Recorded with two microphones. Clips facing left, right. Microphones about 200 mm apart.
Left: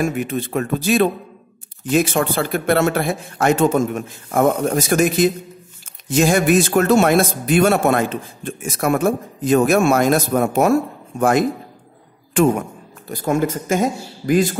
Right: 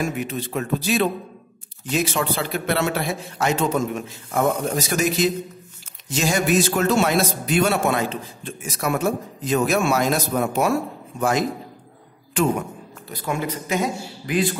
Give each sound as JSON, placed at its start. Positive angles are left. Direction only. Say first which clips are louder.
{"t": 0.0, "sound": "a man's voice", "louder": "left 5 dB", "side_deg": 50}